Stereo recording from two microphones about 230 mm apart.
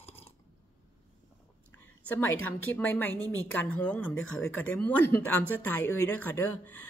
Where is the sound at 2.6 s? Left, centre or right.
Centre.